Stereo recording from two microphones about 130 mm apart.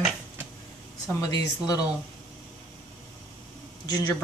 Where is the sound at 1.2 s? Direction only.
30° left (ahead or behind).